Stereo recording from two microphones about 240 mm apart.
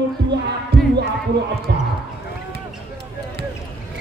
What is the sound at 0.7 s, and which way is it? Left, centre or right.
Music, right.